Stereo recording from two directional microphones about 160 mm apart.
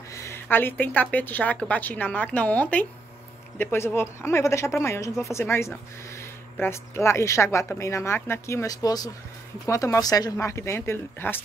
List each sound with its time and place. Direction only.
0.1 s speech: 15° left (ahead or behind)